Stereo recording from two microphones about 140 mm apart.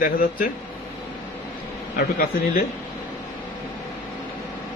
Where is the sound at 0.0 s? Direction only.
85° left.